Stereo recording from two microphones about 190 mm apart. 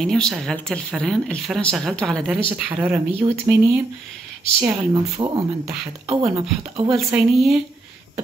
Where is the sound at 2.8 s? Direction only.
10° right (ahead or behind).